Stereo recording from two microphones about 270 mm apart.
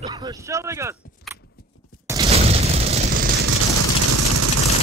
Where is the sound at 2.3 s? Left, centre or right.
Right.